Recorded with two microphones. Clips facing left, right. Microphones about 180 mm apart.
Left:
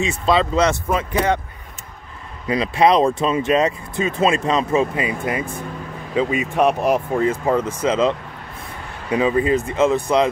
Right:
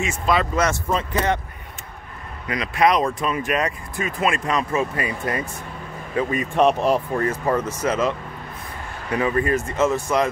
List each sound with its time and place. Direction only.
0.0 s speech: 20° left (ahead or behind)
2.4 s speech: 30° left (ahead or behind); by 7.9 s 10° left (ahead or behind)
9.1 s speech: 15° left (ahead or behind)